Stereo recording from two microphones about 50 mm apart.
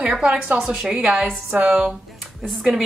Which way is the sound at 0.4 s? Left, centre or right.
Right.